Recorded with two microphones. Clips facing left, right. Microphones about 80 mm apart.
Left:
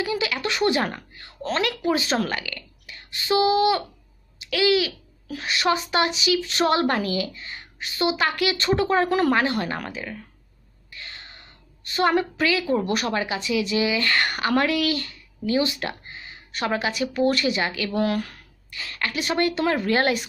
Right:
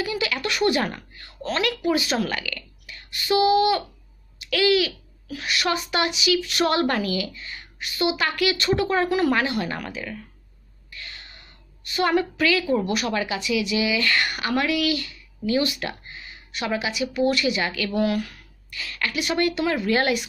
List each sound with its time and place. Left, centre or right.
0.0 s a child's voice: left